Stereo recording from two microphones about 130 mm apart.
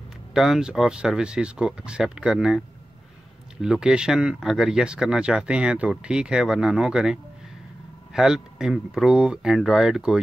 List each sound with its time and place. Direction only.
0.3 s speech: 5° right (ahead or behind)
3.6 s speech: 5° right (ahead or behind)